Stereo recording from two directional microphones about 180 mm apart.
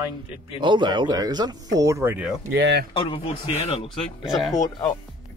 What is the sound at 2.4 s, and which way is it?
Speech, 75° right (ahead or behind).